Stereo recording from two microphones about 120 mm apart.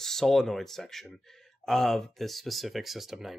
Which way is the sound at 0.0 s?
5° left (ahead or behind).